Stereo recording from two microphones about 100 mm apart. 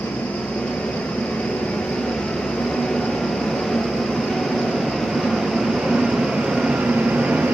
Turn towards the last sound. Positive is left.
turn(degrees=-10)  # may be behind; listen again after turning